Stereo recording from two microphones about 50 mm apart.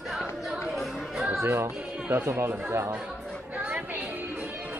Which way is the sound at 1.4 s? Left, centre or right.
Right.